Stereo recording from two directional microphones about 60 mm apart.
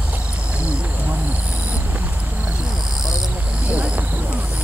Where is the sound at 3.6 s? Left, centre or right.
Centre.